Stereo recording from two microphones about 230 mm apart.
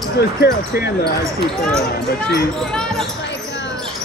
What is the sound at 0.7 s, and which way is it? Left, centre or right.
Speech, left.